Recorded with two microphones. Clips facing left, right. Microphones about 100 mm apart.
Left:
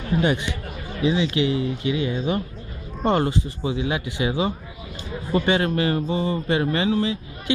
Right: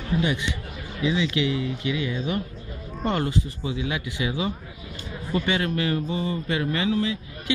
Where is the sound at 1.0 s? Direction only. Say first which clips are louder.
Left 3 dB; 35° left (ahead or behind).